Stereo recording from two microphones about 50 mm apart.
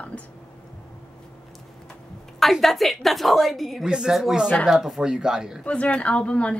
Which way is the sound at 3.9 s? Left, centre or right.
Centre.